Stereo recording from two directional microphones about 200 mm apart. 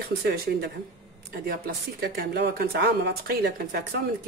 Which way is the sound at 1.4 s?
50° right (ahead or behind).